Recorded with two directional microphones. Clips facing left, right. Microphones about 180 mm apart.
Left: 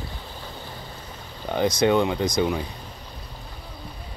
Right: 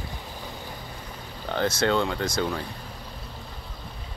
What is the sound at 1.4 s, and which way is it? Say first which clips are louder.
Speech: left 4 dB; 15° left (ahead or behind).